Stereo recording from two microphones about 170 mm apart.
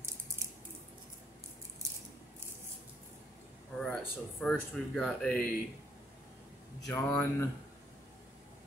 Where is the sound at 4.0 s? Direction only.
5° left (ahead or behind).